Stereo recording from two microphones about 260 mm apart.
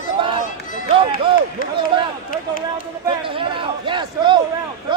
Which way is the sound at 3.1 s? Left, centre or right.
Centre.